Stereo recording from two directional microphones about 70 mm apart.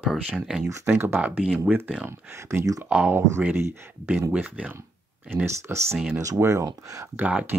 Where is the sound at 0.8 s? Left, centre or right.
Right.